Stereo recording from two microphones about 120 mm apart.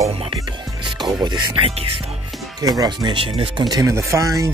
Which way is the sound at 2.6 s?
35° right (ahead or behind).